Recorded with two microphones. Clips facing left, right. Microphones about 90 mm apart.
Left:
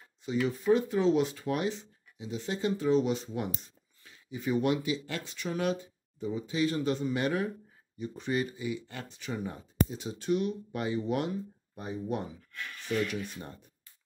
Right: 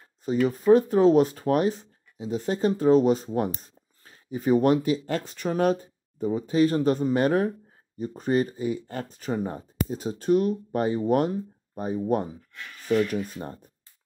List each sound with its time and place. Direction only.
0.2 s speech: 45° right (ahead or behind)